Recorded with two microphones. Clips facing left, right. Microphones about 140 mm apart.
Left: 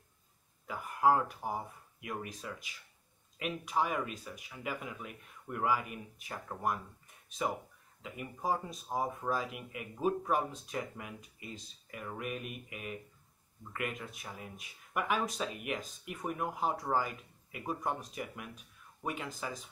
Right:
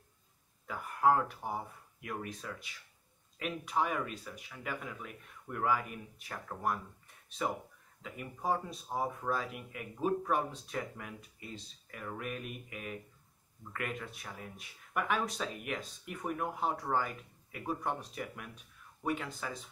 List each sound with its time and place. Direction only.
0.7 s speech: 5° left (ahead or behind)